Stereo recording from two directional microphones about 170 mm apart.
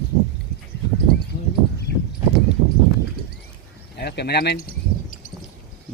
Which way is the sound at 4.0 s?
75° left (ahead or behind).